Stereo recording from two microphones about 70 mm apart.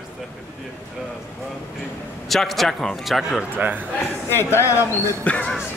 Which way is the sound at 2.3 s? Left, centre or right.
Centre.